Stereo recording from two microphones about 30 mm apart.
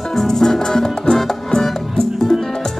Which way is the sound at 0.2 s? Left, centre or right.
Centre.